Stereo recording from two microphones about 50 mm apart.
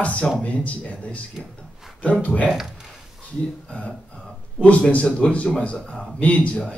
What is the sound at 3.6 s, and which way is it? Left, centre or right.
Speech, left.